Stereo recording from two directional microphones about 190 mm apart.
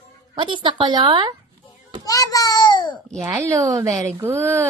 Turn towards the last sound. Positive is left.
turn(degrees=-10)  # may be behind; listen again after turning